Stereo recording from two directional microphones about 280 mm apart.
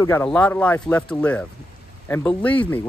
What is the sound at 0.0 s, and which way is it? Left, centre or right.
Speech, centre.